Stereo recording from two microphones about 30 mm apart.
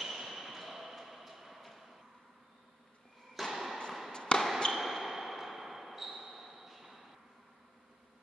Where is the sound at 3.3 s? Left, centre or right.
Centre.